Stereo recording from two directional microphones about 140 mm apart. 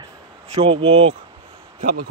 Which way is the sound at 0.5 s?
40° right (ahead or behind).